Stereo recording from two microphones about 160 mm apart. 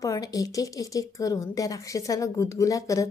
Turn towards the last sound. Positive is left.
turn(degrees=20)  # may be behind; listen again after turning